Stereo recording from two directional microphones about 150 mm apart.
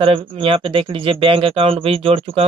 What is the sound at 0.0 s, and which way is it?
Speech, 35° right (ahead or behind).